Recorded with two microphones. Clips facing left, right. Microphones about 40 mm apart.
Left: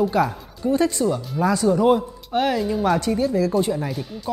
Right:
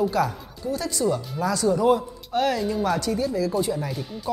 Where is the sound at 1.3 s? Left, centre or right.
Centre.